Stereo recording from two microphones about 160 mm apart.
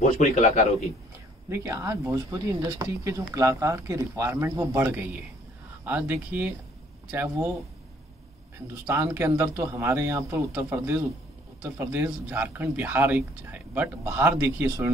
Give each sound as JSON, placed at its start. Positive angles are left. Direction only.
{"t": 0.0, "sound": "a man's voice", "side_deg": 50}
{"t": 1.5, "sound": "speech", "side_deg": -20}
{"t": 8.8, "sound": "speech", "side_deg": -15}